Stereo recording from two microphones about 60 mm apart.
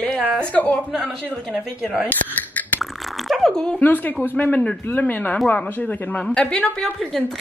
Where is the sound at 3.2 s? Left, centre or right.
Centre.